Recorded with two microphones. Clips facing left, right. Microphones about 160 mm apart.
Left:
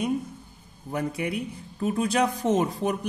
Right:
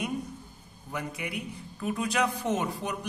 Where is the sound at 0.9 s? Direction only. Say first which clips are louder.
Left 7 dB; 30° left (ahead or behind).